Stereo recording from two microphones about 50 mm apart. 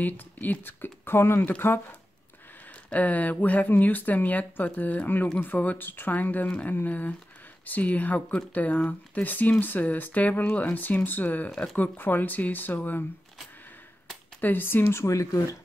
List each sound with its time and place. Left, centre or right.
0.0 s speech: left
2.9 s speech: left
14.4 s speech: left
15.0 s speech: left